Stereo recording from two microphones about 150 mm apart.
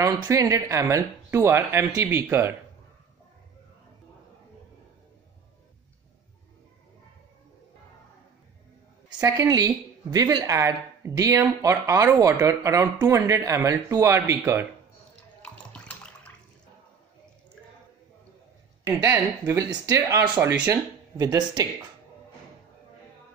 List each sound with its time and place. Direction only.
0.0 s speech: 20° right (ahead or behind)
9.2 s speech: 25° right (ahead or behind)
15.4 s water: 10° left (ahead or behind)
19.4 s speech: 20° right (ahead or behind)